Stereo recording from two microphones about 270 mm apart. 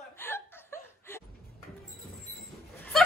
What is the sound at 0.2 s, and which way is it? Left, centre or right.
Chuckle, centre.